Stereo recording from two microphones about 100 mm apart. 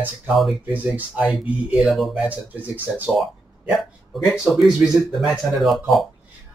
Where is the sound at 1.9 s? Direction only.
Centre (ahead or behind).